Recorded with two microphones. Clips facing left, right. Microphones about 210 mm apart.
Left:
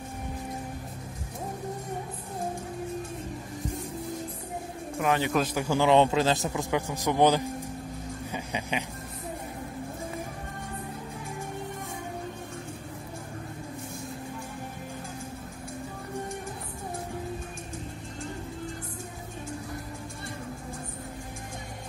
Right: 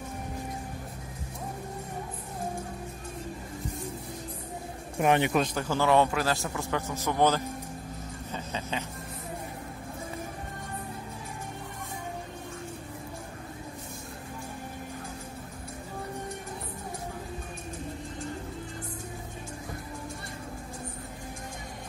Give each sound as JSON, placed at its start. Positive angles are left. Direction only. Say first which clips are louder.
{"t": 5.0, "sound": "speech", "louder": "right 2 dB", "side_deg": -20}
{"t": 5.3, "sound": "a man's voice", "louder": "left 1 dB", "side_deg": 5}
{"t": 8.3, "sound": "music", "louder": "left 2 dB", "side_deg": 15}